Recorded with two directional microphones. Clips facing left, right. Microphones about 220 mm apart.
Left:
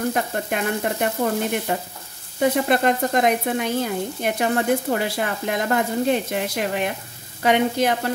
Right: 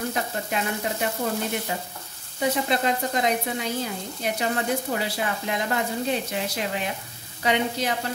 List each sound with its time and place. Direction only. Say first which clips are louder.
0.1 s frying: left 4 dB; 55° left (ahead or behind)
2.4 s speech: left 5 dB; 55° left (ahead or behind)